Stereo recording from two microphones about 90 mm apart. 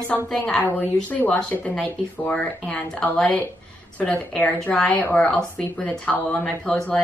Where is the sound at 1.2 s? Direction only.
20° left (ahead or behind).